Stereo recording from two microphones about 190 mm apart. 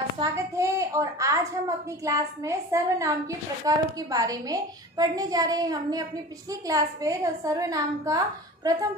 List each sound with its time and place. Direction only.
0.2 s a child's voice: 15° right (ahead or behind)